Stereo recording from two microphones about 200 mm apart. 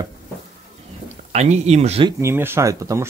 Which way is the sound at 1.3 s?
35° right (ahead or behind).